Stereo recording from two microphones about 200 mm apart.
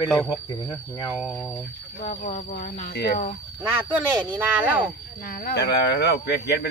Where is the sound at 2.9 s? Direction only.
55° left (ahead or behind).